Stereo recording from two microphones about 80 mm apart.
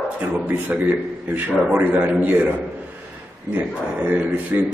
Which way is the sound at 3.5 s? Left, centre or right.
Right.